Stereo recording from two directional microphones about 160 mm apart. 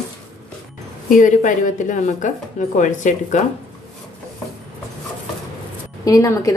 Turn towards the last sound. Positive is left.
turn(degrees=20)  # may be behind; listen again after turning